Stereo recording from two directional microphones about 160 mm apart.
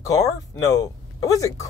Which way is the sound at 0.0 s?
20° left (ahead or behind).